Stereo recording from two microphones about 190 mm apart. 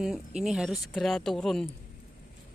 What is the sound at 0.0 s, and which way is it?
Speech, centre (ahead or behind).